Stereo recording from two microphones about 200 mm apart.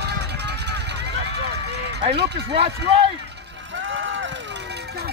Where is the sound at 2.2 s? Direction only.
55° right (ahead or behind).